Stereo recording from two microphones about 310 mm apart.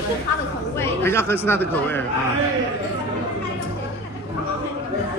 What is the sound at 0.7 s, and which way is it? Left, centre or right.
Speech, centre.